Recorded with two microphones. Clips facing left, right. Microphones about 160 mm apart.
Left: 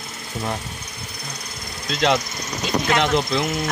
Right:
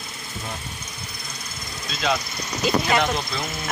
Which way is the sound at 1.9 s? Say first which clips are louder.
Left 5 dB; 70° left (ahead or behind).